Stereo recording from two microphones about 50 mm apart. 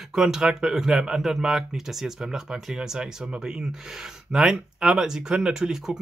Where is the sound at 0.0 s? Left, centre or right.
Centre.